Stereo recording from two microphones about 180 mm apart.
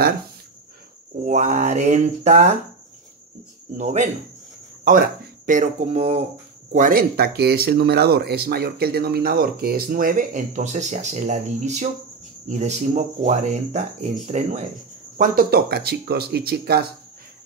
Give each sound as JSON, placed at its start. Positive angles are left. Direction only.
{"t": 1.2, "sound": "speech", "side_deg": -40}
{"t": 3.7, "sound": "speech", "side_deg": -40}
{"t": 5.5, "sound": "speech", "side_deg": -40}
{"t": 6.7, "sound": "speech", "side_deg": -50}
{"t": 15.1, "sound": "speech", "side_deg": -50}